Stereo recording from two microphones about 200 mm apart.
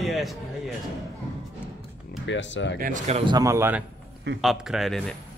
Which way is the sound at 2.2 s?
65° left (ahead or behind).